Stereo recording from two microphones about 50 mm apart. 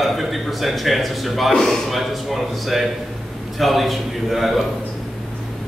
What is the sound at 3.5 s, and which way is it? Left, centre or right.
A man's voice, centre.